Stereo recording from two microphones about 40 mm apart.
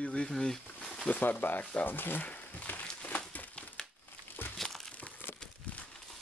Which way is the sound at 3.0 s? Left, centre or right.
Left.